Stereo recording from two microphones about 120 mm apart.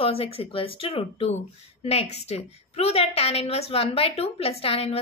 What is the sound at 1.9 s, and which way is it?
A woman's voice, 60° left (ahead or behind).